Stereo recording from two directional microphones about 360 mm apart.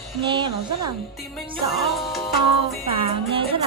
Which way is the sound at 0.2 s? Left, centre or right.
Centre.